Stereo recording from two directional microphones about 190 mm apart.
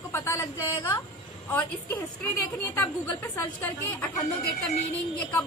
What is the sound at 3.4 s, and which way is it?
A woman's voice, 10° left (ahead or behind).